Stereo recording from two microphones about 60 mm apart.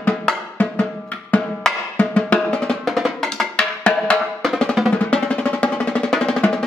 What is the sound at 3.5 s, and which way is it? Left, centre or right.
Music, centre.